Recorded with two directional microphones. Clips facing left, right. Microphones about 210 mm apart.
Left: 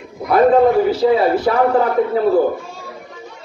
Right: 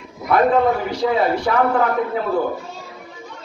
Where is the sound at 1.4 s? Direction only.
30° left (ahead or behind).